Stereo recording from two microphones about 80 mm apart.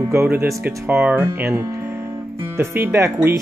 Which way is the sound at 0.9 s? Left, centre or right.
Centre.